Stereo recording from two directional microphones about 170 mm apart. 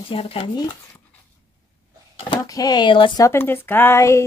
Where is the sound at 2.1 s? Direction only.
25° left (ahead or behind).